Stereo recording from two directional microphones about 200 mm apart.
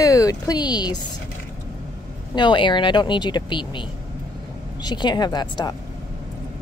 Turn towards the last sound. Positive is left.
turn(degrees=20)  # may be behind; listen again after turning